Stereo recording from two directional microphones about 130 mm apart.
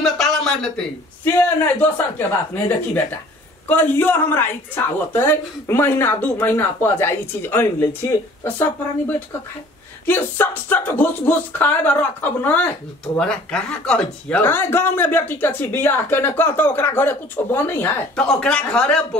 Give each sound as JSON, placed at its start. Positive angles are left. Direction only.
{"t": 0.0, "sound": "a sound", "side_deg": 5}
{"t": 1.2, "sound": "speech", "side_deg": 15}
{"t": 18.2, "sound": "speech", "side_deg": 5}